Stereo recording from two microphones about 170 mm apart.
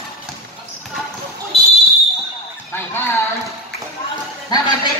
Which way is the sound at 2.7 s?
15° left (ahead or behind).